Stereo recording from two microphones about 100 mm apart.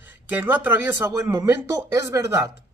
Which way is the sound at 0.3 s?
20° right (ahead or behind).